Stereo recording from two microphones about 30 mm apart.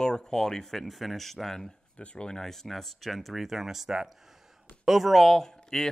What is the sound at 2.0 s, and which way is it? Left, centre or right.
Speech, left.